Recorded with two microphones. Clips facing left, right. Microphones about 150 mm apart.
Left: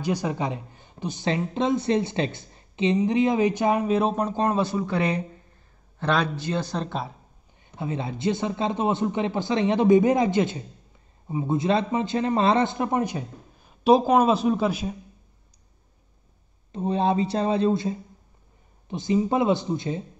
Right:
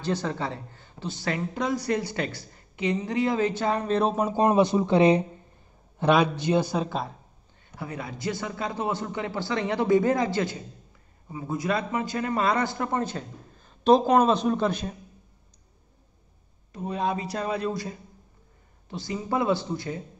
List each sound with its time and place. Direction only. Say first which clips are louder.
0.0 s a woman's voice: left 2 dB; 15° left (ahead or behind)
7.7 s a woman's voice: left 5 dB; 25° left (ahead or behind); by 15.0 s 5° left (ahead or behind)
16.7 s speech: left 5 dB; 30° left (ahead or behind)